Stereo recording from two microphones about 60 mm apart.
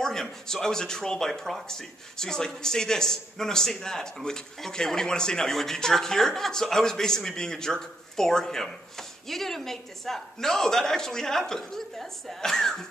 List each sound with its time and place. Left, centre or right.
0.0 s speech: centre